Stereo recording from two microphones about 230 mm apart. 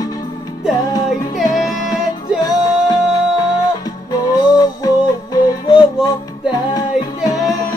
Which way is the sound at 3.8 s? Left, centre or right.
Centre.